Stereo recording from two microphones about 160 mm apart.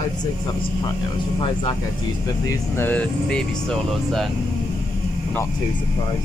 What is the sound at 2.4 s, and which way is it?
Speech, 15° left (ahead or behind).